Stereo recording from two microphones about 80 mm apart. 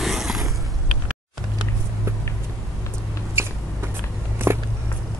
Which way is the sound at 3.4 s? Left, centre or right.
Right.